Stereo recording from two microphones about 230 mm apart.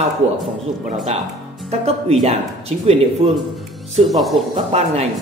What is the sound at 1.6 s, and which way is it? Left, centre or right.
Speech, right.